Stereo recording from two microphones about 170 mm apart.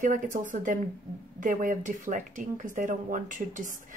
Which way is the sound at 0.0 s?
50° right (ahead or behind).